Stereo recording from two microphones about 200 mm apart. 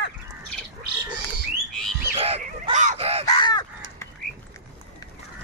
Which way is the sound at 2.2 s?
30° right (ahead or behind).